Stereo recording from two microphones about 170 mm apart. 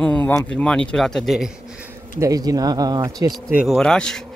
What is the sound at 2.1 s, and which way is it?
Speech, 20° right (ahead or behind).